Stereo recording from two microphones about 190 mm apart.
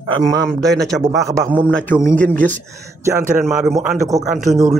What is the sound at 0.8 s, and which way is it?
Speech, centre (ahead or behind).